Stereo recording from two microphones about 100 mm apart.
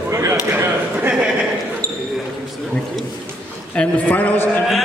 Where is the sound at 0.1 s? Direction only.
25° right (ahead or behind).